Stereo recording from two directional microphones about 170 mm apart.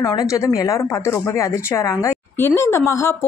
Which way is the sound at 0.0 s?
20° left (ahead or behind).